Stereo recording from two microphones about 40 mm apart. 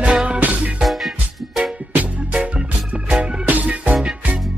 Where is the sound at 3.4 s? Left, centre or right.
Right.